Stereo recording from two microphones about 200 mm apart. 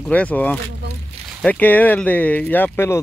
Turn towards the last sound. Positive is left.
turn(degrees=10)  # may be behind; listen again after turning